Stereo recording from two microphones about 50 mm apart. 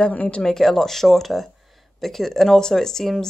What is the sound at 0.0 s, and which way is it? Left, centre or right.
Speech, left.